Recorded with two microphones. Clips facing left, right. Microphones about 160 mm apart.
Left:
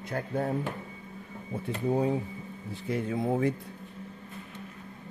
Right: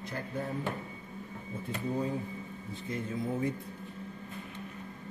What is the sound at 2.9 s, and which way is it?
Speech, 70° left (ahead or behind).